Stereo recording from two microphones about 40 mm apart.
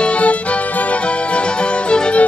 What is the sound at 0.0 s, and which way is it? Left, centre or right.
Music, left.